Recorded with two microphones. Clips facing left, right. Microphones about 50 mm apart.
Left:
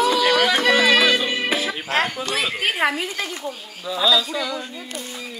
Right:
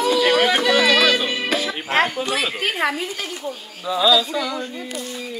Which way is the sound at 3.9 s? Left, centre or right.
Centre.